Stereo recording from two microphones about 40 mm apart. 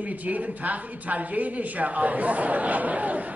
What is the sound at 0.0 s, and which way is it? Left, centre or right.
A woman's voice, right.